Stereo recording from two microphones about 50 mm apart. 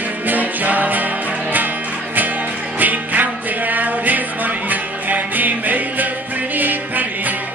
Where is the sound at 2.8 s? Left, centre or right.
Right.